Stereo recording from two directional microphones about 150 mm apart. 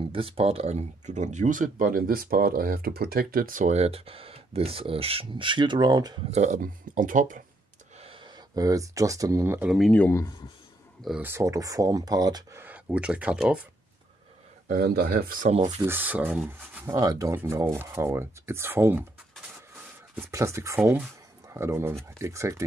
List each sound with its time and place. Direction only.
0.1 s speech: 40° right (ahead or behind)
6.3 s speech: 50° right (ahead or behind)
8.0 s a sound: 35° right (ahead or behind)
8.5 s speech: 25° right (ahead or behind)
9.7 s speech: centre (ahead or behind)
11.0 s speech: 5° right (ahead or behind)
11.2 s speech: 20° right (ahead or behind)
12.6 s speech: 10° right (ahead or behind)
14.7 s speech: 80° right
15.8 s speech: 15° right (ahead or behind)
20.2 s speech: 20° right (ahead or behind)